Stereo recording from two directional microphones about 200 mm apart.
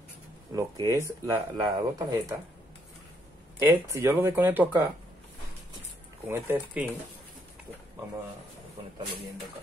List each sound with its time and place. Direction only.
0.5 s speech: 15° right (ahead or behind)
3.5 s speech: 15° right (ahead or behind)
6.2 s speech: 10° right (ahead or behind)